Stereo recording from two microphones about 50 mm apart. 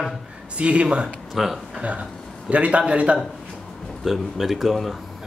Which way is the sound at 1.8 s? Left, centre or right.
Right.